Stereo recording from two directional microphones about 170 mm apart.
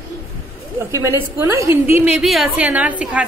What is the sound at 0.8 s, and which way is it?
A woman's voice, 15° right (ahead or behind).